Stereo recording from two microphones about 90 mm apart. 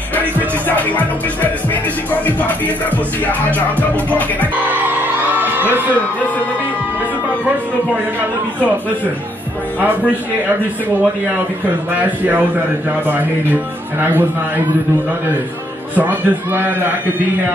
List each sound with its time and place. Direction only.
0.7 s music: 20° left (ahead or behind)
4.6 s music: 20° right (ahead or behind)
11.9 s speech: 20° right (ahead or behind)
16.0 s speech: 20° right (ahead or behind)